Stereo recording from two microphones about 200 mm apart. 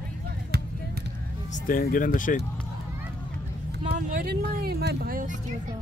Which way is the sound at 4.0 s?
45° right (ahead or behind).